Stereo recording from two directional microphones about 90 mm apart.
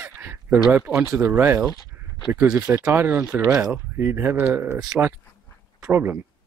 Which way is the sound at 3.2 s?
10° right (ahead or behind).